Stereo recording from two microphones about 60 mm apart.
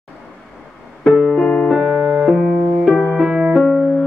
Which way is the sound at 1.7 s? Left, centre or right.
Centre.